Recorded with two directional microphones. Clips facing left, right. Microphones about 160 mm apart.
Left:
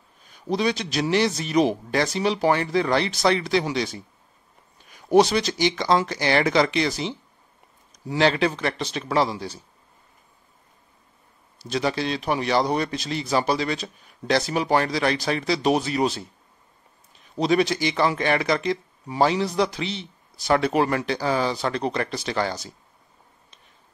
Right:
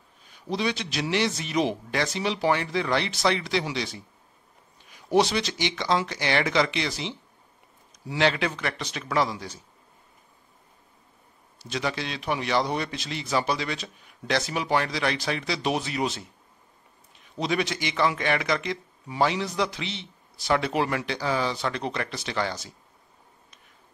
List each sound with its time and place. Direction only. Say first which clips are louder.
0.5 s speech: left 4 dB; 40° left (ahead or behind)
11.5 s speech: left 5 dB; 35° left (ahead or behind)
17.4 s speech: left 6 dB; 35° left (ahead or behind)